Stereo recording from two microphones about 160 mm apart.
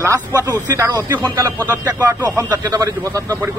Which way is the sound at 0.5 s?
20° right (ahead or behind).